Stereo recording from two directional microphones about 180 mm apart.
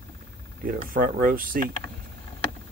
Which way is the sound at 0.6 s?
50° right (ahead or behind).